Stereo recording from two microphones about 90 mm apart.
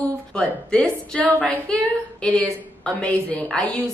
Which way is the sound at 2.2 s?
15° left (ahead or behind).